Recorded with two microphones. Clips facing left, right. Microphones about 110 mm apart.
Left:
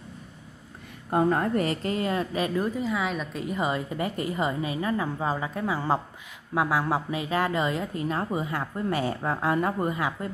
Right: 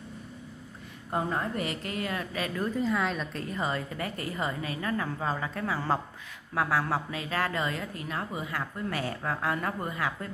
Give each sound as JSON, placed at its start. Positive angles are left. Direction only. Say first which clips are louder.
{"t": 1.1, "sound": "speech", "louder": "left 7 dB", "side_deg": 55}
{"t": 2.7, "sound": "a woman's voice", "louder": "even", "side_deg": 5}